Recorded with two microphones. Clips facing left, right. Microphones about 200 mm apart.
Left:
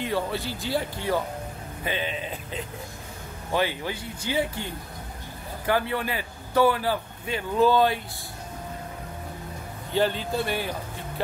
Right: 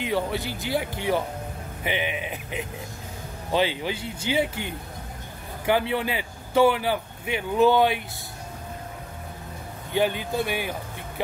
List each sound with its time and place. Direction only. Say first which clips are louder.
0.0 s speech: right 1 dB; 15° right (ahead or behind)
9.9 s speech: right 1 dB; 15° right (ahead or behind)